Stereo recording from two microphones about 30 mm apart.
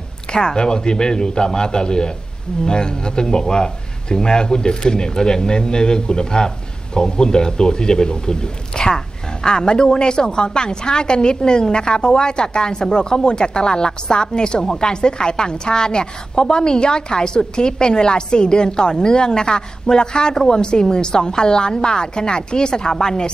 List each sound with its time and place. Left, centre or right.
0.3 s speech: left